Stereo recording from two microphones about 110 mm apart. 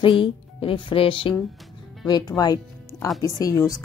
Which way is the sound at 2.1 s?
40° left (ahead or behind).